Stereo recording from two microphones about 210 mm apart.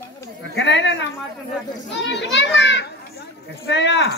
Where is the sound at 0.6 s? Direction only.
60° left (ahead or behind).